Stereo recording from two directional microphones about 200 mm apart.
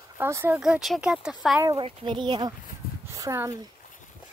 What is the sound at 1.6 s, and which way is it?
Speech, 20° right (ahead or behind).